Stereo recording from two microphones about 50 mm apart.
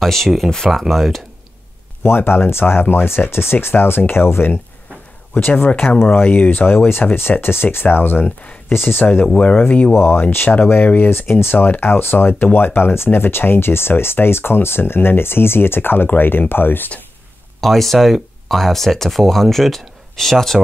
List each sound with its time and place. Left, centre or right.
0.0 s speech: centre
2.0 s speech: left
6.2 s speech: left
6.5 s speech: left
8.8 s speech: left
9.2 s speech: left
9.9 s speech: left
11.1 s speech: left
11.5 s speech: left
17.6 s speech: centre